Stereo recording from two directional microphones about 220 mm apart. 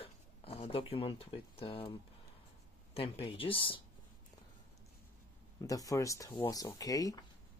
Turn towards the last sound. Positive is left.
turn(degrees=15)  # may be behind; listen again after turning